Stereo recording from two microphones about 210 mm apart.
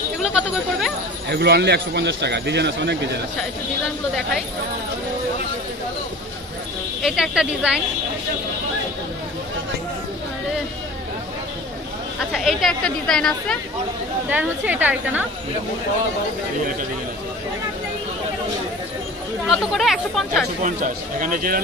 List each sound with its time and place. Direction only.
0.2 s speech: 5° right (ahead or behind)
1.3 s a man's voice: 50° right (ahead or behind)
7.0 s a woman's voice: centre (ahead or behind)
12.3 s a woman's voice: centre (ahead or behind)
19.5 s a woman's voice: centre (ahead or behind)
20.6 s speech: 40° right (ahead or behind)